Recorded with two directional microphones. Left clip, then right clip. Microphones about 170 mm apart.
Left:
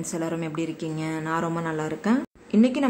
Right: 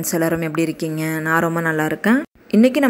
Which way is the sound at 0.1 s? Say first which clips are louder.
Right 10 dB; 30° right (ahead or behind).